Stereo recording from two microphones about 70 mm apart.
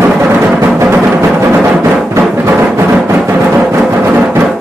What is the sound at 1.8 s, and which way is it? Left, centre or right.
Music, right.